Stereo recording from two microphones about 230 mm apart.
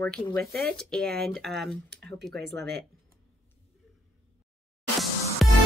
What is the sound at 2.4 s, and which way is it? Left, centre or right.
Speech, right.